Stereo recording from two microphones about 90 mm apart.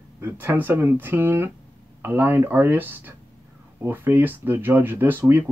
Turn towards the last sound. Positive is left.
turn(degrees=-25)  # may be behind; listen again after turning